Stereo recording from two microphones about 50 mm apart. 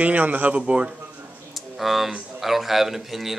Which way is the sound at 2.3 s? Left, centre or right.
Centre.